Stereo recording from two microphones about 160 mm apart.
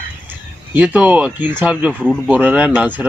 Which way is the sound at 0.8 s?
10° right (ahead or behind).